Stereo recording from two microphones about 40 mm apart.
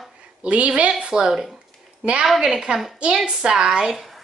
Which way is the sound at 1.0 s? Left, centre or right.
Centre.